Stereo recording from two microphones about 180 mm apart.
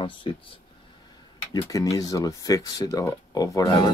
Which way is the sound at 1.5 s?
20° left (ahead or behind).